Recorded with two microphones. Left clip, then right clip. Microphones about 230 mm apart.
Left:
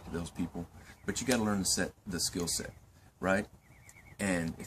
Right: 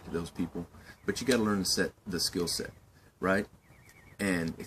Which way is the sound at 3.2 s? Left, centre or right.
Centre.